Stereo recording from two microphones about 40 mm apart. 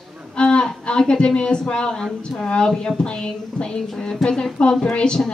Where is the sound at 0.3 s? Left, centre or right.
Left.